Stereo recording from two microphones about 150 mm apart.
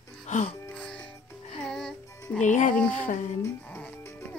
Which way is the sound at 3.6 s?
10° left (ahead or behind).